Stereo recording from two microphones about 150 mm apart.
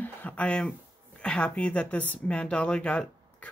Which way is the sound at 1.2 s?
5° left (ahead or behind).